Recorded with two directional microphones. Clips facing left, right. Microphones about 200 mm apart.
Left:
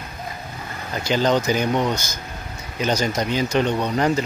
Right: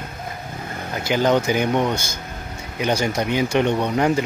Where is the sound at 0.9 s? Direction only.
15° right (ahead or behind).